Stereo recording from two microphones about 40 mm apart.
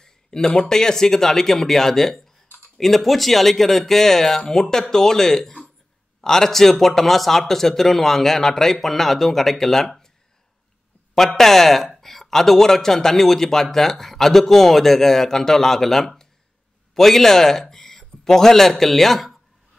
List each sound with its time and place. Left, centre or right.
0.0 s a sound: centre
0.6 s speech: centre
11.1 s a man's voice: centre